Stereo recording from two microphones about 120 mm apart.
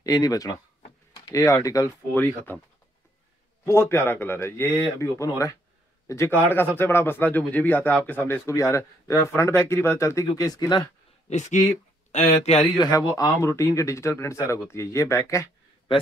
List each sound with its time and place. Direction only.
0.0 s speech: 30° left (ahead or behind)
2.1 s speech: 15° left (ahead or behind)
3.6 s speech: 20° left (ahead or behind)
11.2 s speech: 75° left (ahead or behind)
12.7 s speech: 30° left (ahead or behind)